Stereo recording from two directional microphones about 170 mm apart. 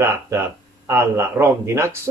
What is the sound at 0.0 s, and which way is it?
Speech, 15° right (ahead or behind).